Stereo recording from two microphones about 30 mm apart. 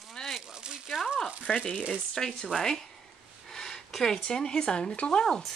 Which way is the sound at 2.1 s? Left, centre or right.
Centre.